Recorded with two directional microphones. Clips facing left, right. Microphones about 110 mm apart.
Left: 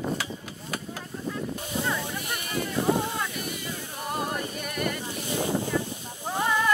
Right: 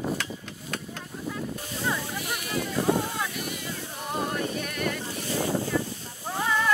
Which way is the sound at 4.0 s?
Centre (ahead or behind).